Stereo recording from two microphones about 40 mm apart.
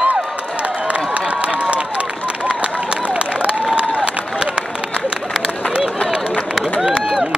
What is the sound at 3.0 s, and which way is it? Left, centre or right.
Applause, right.